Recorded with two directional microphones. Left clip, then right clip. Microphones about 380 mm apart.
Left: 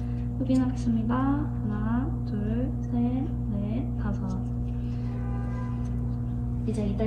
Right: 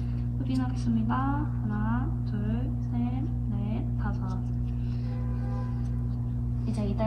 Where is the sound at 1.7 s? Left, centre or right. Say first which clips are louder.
Even; centre.